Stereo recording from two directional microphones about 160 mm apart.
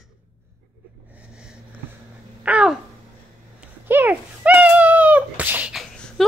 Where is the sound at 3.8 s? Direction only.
10° right (ahead or behind).